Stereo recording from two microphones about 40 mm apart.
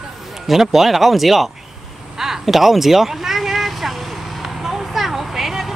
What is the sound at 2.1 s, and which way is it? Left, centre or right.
Vehicle, centre.